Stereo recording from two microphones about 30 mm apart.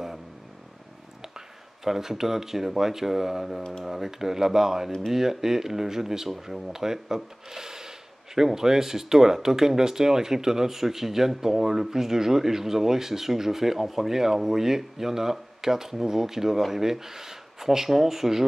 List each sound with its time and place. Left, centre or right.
1.9 s speech: centre
7.5 s a sound: centre
8.4 s speech: centre